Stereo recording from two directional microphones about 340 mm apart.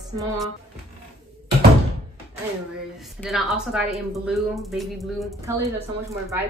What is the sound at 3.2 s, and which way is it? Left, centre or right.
A woman's voice, centre.